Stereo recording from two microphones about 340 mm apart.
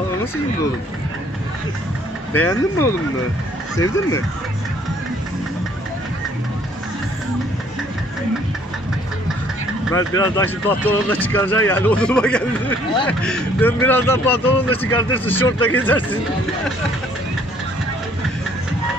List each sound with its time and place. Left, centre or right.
2.3 s speech: centre
3.7 s speech: centre
9.9 s speech: centre